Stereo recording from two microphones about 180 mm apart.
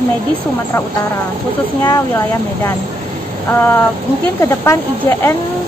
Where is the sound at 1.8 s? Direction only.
20° left (ahead or behind).